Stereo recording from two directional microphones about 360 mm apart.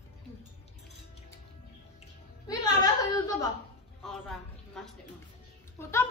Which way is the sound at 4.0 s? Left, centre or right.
Centre.